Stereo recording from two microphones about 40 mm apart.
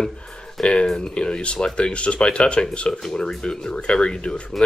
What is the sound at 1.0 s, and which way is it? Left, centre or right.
Speech, left.